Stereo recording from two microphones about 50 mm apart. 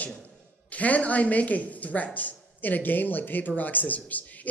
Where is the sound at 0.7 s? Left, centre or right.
Left.